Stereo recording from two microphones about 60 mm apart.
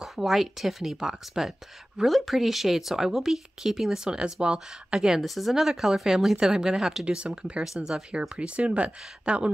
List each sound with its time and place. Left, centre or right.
0.0 s speech: centre
7.2 s speech: centre
7.6 s speech: centre
8.1 s speech: centre